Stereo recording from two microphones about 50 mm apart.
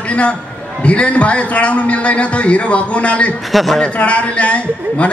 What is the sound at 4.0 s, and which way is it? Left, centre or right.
A man's voice, left.